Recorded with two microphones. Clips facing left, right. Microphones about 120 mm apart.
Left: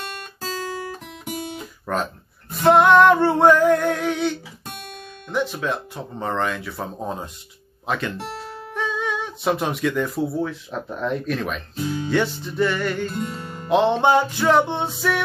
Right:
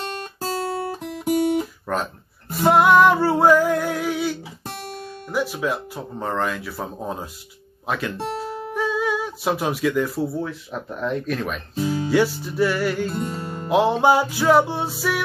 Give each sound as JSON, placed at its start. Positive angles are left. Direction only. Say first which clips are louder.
{"t": 0.0, "sound": "guitar", "louder": "right 4 dB", "side_deg": -40}
{"t": 1.6, "sound": "guitar", "louder": "right 1 dB", "side_deg": -5}
{"t": 2.6, "sound": "music", "louder": "left 1 dB", "side_deg": -5}
{"t": 5.3, "sound": "speech", "louder": "even", "side_deg": -5}
{"t": 8.4, "sound": "guitar", "louder": "right 6 dB", "side_deg": -15}
{"t": 8.7, "sound": "speech", "louder": "right 3 dB", "side_deg": -5}
{"t": 13.2, "sound": "music", "louder": "right 2 dB", "side_deg": -30}
{"t": 13.7, "sound": "speech", "louder": "even", "side_deg": -5}